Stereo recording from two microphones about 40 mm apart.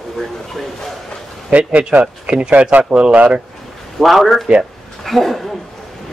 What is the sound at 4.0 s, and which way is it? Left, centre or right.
Speech, centre.